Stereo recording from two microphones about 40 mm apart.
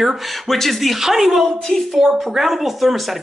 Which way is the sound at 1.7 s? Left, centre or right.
Centre.